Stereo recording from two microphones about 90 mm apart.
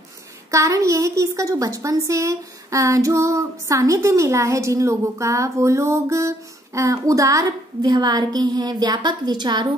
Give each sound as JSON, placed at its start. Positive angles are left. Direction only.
{"t": 0.5, "sound": "a woman's voice", "side_deg": -35}